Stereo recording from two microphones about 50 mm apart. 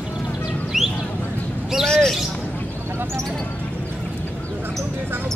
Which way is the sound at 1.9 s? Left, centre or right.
Centre.